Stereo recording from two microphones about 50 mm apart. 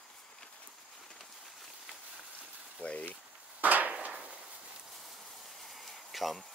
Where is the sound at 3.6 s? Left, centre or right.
Right.